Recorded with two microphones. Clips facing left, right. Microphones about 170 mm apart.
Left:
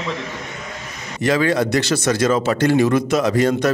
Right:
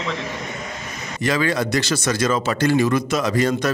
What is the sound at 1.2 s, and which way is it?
Speech, 60° left (ahead or behind).